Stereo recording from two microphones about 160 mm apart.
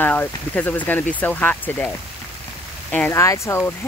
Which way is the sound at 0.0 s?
10° left (ahead or behind).